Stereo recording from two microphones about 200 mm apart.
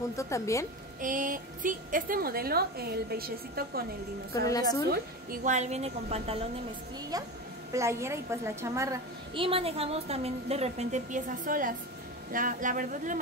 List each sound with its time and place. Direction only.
0.1 s a woman's voice: 15° left (ahead or behind)
1.0 s a woman's voice: 40° right (ahead or behind)
4.5 s a woman's voice: 20° left (ahead or behind)
4.8 s a woman's voice: 40° right (ahead or behind)
7.7 s a woman's voice: 15° right (ahead or behind); by 13.2 s 40° right (ahead or behind)